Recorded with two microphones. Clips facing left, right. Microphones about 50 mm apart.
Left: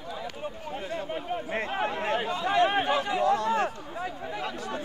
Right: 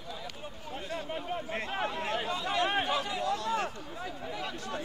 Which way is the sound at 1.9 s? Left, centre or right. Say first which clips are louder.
Left 4 dB; left.